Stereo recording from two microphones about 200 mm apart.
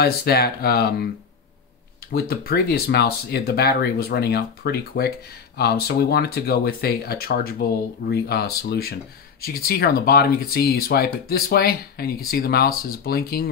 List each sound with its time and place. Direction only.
0.0 s speech: 50° left (ahead or behind)
2.1 s speech: 50° left (ahead or behind)